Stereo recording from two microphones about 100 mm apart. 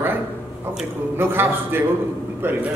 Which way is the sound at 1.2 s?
20° right (ahead or behind).